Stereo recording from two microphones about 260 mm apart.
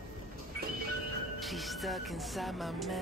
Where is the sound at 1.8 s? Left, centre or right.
Centre.